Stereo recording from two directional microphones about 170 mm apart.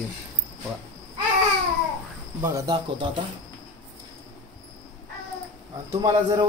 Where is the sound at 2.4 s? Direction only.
20° right (ahead or behind).